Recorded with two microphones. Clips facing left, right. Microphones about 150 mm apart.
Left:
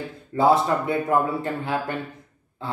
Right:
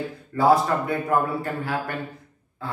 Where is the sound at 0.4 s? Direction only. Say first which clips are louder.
Even; 25° left (ahead or behind).